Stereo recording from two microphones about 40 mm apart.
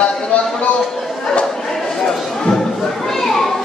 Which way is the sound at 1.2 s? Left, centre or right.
Left.